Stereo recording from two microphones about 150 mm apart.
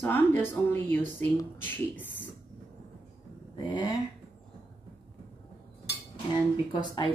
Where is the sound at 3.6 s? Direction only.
30° left (ahead or behind).